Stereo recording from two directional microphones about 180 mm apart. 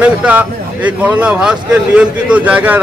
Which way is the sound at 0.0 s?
5° right (ahead or behind).